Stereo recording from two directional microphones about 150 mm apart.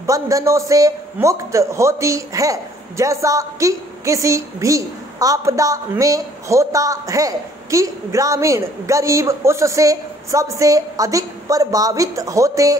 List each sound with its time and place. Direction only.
0.0 s a man's voice: 20° right (ahead or behind)